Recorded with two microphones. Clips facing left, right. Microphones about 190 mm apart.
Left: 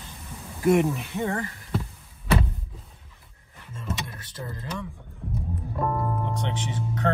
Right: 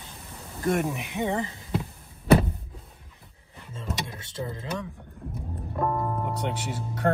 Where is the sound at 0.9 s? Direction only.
15° right (ahead or behind).